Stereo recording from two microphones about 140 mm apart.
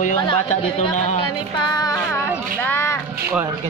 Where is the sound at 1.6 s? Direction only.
30° left (ahead or behind).